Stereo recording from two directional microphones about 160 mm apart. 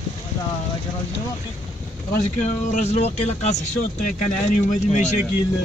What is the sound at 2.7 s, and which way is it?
Speech, 50° left (ahead or behind).